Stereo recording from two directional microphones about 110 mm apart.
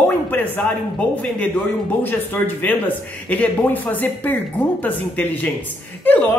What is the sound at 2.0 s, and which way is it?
Speech, 15° left (ahead or behind).